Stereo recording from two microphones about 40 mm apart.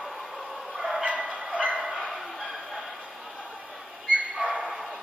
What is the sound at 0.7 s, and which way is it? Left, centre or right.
Bow-wow, centre.